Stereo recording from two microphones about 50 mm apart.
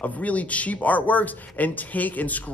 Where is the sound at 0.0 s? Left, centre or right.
Left.